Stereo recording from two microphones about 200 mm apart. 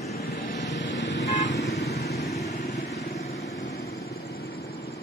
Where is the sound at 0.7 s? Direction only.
65° left (ahead or behind).